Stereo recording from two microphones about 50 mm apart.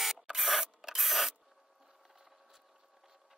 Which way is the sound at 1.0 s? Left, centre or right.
Centre.